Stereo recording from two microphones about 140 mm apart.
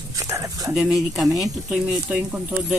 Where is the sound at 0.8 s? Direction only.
Centre (ahead or behind).